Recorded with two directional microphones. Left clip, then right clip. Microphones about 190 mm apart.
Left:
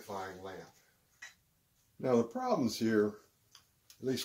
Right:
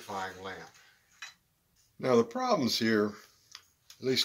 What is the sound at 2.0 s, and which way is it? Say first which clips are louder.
Speech: right 5 dB; 15° right (ahead or behind).